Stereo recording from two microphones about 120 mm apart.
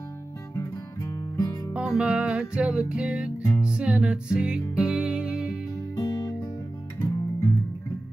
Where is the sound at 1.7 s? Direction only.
10° right (ahead or behind).